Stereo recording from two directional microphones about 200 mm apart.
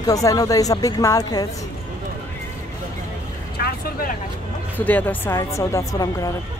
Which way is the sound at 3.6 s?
50° left (ahead or behind).